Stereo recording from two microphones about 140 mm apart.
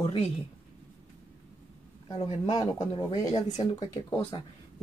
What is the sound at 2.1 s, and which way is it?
Speech, 45° left (ahead or behind).